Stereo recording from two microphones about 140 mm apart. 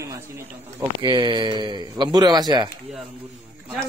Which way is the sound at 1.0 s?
35° right (ahead or behind).